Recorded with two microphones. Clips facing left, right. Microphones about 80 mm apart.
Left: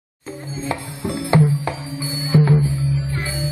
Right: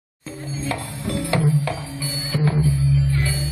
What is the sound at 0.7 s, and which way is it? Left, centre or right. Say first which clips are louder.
Music: left 2 dB; left.